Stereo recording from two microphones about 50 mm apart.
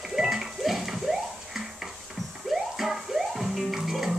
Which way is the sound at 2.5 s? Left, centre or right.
Centre.